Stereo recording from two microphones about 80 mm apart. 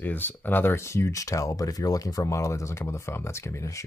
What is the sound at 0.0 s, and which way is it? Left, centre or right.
Speech, left.